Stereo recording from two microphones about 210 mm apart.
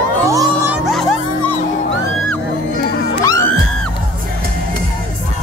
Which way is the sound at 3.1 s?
15° left (ahead or behind).